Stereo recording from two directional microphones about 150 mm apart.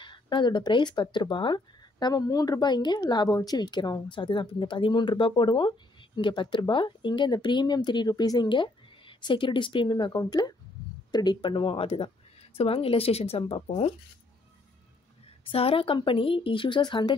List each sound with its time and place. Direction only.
0.0 s speech: 30° left (ahead or behind)
15.5 s speech: 40° left (ahead or behind)